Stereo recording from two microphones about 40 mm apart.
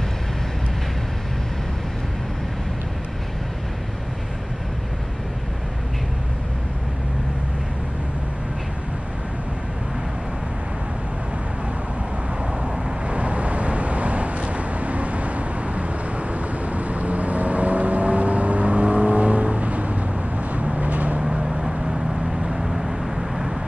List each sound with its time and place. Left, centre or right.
12.6 s vehicle: right
21.2 s vehicle: centre